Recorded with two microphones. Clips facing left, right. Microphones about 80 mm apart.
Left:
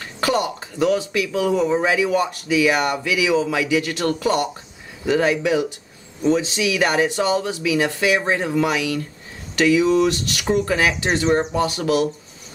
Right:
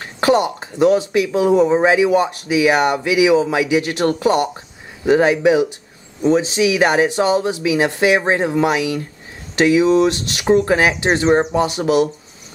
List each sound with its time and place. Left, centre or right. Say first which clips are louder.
0.0 s speech: right 6 dB; right
6.2 s speech: right 4 dB; right